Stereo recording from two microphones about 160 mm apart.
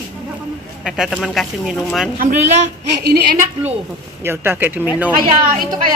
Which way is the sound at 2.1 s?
55° right (ahead or behind).